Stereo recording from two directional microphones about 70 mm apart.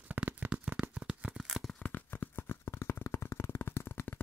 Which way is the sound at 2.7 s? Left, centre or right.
Left.